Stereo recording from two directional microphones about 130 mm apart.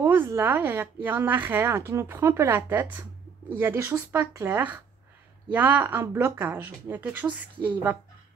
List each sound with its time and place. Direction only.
0.0 s a woman's voice: 15° right (ahead or behind)